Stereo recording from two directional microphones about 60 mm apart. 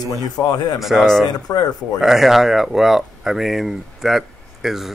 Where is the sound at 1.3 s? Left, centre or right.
Left.